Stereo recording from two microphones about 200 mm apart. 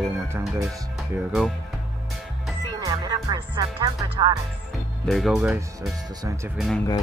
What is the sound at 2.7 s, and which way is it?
Speech, 20° right (ahead or behind).